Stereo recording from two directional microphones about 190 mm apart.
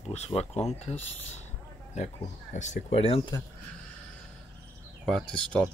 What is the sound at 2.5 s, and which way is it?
Speech, 40° left (ahead or behind).